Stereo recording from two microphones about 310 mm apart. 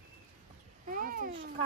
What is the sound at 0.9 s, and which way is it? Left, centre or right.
Babbling, right.